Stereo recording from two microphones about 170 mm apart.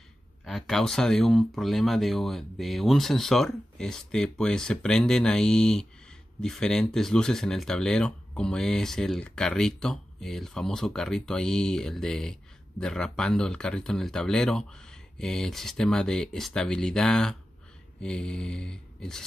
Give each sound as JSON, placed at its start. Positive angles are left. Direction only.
{"t": 0.5, "sound": "speech", "side_deg": 5}